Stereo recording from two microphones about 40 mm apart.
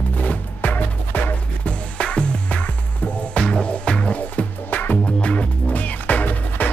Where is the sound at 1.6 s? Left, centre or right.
Left.